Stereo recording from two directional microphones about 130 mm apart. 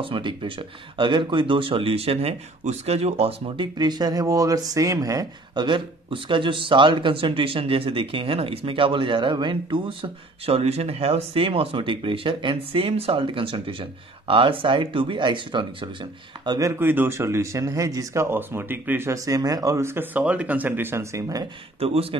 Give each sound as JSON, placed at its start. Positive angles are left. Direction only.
{"t": 0.0, "sound": "speech", "side_deg": -40}
{"t": 16.5, "sound": "speech", "side_deg": -20}
{"t": 21.7, "sound": "speech", "side_deg": -45}